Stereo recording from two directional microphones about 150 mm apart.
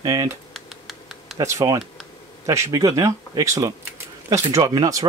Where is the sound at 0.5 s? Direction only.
Centre (ahead or behind).